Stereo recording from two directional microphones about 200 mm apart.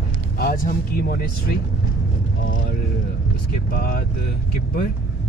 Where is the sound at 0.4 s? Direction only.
45° left (ahead or behind).